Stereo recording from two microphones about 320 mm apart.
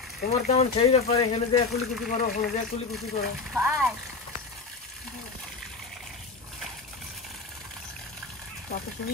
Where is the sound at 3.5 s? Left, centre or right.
Centre.